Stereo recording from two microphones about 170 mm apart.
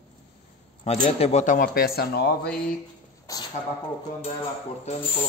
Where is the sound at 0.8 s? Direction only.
35° left (ahead or behind).